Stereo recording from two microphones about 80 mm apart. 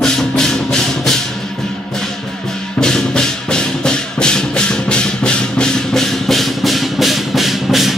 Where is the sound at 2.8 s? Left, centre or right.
Centre.